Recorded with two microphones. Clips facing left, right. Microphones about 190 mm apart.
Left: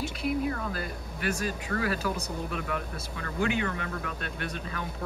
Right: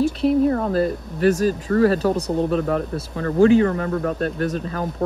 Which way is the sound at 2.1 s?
90° right.